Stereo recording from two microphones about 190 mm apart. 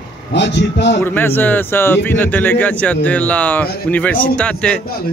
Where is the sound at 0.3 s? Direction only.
65° left (ahead or behind).